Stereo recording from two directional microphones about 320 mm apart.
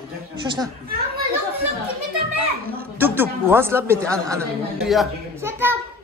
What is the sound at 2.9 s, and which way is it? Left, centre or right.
Speech, centre.